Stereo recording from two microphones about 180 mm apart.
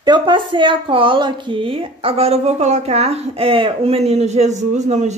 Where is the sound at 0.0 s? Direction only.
25° right (ahead or behind).